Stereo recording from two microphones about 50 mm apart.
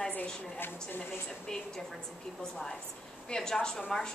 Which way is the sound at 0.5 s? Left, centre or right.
Left.